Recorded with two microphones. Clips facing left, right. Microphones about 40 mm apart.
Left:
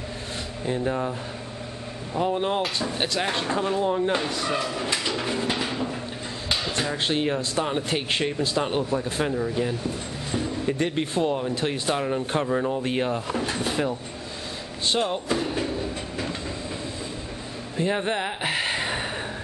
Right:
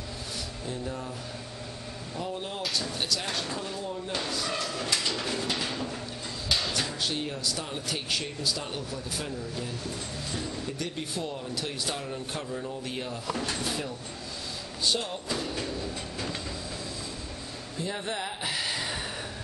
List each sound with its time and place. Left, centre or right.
0.7 s speech: left
2.1 s speech: left
3.8 s speech: left
4.5 s a sound: centre
6.9 s speech: left
9.7 s a sound: left
10.7 s speech: left
13.3 s a sound: left
14.9 s speech: left
15.3 s train: left
17.7 s speech: left